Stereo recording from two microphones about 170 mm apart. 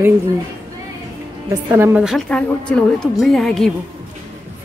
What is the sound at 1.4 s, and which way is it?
Speech, 15° right (ahead or behind).